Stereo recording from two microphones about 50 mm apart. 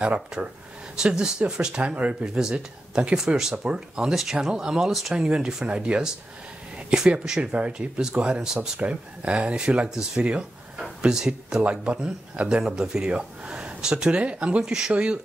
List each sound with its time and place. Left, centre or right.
0.0 s speech: right
3.2 s speech: centre
5.7 s speech: right
9.8 s speech: centre
14.6 s speech: centre